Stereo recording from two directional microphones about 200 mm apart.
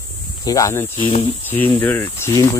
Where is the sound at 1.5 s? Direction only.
10° left (ahead or behind).